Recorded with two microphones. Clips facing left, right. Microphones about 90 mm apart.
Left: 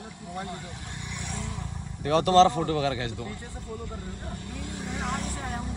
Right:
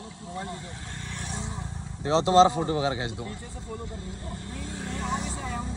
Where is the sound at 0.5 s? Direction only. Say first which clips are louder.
Even; 20° left (ahead or behind).